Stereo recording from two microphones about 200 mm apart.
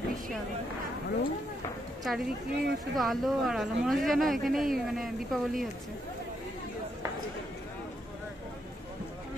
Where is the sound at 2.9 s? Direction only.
Centre (ahead or behind).